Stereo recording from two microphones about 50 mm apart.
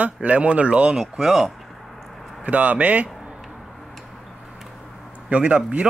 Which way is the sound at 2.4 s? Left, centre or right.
Right.